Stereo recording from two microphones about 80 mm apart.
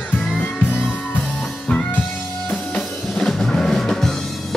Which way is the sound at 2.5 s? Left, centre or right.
Centre.